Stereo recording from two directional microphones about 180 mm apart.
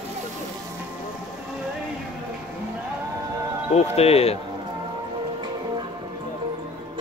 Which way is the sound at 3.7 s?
35° left (ahead or behind).